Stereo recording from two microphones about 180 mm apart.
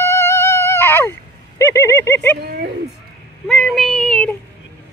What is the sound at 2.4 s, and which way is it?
Speech, 60° right (ahead or behind).